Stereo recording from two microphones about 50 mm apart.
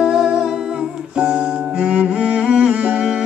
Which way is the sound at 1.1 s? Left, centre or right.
Right.